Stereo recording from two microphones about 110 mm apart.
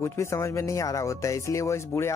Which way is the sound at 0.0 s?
25° left (ahead or behind).